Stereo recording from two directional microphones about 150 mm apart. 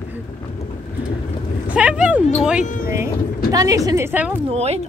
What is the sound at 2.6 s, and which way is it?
Speech, 65° left (ahead or behind).